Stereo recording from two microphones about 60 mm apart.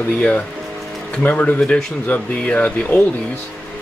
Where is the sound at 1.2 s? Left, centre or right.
Left.